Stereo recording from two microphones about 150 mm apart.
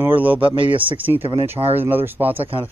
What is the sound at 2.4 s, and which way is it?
Speech, 35° right (ahead or behind).